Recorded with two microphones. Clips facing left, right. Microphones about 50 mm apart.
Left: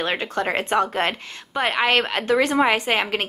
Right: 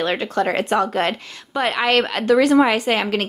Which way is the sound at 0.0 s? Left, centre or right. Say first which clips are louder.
Right 3 dB; left.